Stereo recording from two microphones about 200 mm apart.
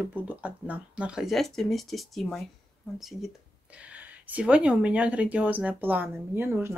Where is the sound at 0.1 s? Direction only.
10° right (ahead or behind).